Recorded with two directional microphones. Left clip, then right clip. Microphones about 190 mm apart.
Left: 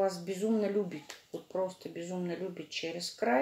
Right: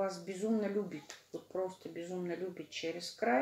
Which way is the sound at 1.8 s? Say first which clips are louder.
Left 2 dB; 35° left (ahead or behind).